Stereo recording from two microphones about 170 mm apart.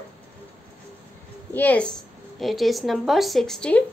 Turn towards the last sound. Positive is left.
turn(degrees=5)  # may be behind; listen again after turning